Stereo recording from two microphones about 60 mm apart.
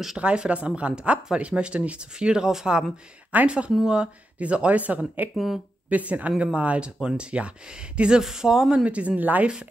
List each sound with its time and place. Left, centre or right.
0.2 s speech: centre
5.3 s speech: centre
5.9 s speech: right
8.2 s speech: centre
8.8 s speech: right